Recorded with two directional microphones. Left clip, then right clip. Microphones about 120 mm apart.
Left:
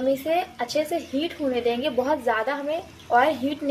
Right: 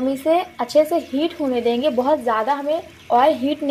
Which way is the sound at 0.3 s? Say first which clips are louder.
Right 6 dB; 45° right (ahead or behind).